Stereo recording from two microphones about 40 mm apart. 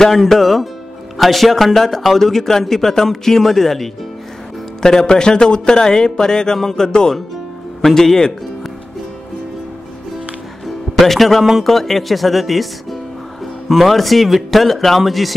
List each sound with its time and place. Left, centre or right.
0.1 s a man's voice: centre
11.0 s a man's voice: centre
13.7 s a man's voice: centre